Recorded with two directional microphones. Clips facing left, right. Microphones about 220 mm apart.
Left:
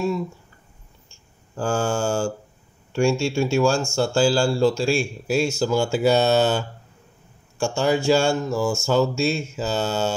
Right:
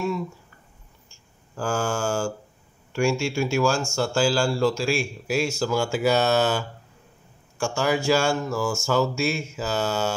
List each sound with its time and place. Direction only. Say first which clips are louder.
1.6 s speech: left 3 dB; 25° left (ahead or behind)